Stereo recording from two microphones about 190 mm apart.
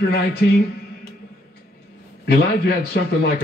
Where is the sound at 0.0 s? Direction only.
55° left (ahead or behind).